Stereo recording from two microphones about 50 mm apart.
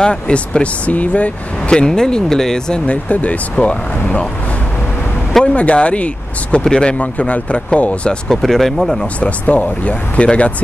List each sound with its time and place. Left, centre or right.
0.0 s speech: centre
1.7 s speech: centre
2.9 s speech: left
5.4 s speech: left
8.4 s speech: centre
9.2 s speech: left